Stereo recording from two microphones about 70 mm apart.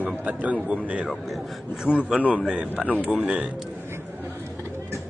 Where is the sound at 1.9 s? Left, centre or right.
Centre.